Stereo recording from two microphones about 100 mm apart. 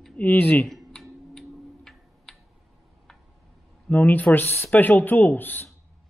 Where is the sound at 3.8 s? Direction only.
15° left (ahead or behind).